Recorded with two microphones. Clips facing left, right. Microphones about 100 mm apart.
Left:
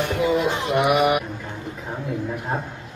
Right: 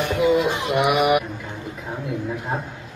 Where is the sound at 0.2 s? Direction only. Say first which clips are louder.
Right 3 dB; 15° right (ahead or behind).